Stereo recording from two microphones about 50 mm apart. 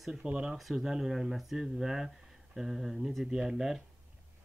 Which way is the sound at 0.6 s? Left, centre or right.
Centre.